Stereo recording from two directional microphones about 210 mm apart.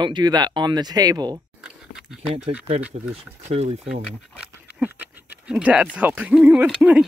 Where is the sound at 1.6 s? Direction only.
5° right (ahead or behind).